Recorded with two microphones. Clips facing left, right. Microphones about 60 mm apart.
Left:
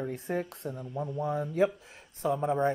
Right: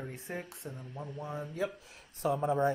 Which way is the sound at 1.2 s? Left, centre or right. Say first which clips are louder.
Left 9 dB; left.